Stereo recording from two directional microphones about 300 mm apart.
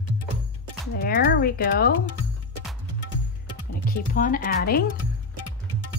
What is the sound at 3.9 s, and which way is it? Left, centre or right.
Speech, left.